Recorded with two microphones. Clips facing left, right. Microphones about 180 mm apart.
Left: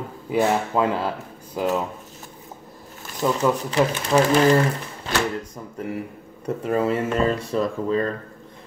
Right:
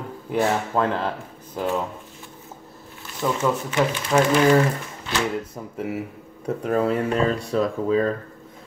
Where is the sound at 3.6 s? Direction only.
35° left (ahead or behind).